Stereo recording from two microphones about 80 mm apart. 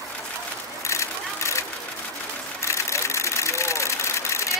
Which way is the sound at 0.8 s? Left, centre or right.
Left.